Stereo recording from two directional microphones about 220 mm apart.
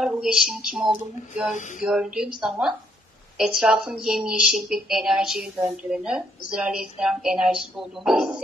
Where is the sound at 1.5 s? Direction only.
35° left (ahead or behind).